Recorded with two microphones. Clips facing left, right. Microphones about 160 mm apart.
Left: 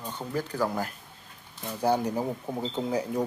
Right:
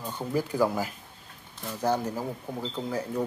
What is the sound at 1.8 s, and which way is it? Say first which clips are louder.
Speech: left 2 dB; 15° left (ahead or behind).